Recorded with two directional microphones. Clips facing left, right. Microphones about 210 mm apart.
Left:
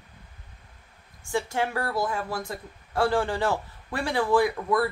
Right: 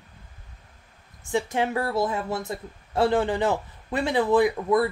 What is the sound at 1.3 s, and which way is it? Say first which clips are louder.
Speech: right 3 dB; 20° right (ahead or behind).